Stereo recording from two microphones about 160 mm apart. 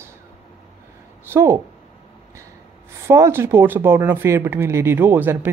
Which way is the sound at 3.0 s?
15° right (ahead or behind).